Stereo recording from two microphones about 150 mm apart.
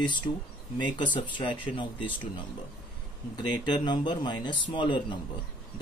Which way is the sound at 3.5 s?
30° left (ahead or behind).